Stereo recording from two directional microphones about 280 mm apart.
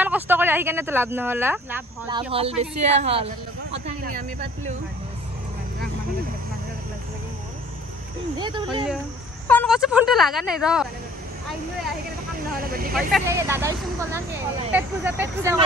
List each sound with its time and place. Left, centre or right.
0.0 s speech: centre; by 4.7 s right
8.4 s speech: centre
9.5 s speech: centre
12.6 s speech: right
13.3 s speech: centre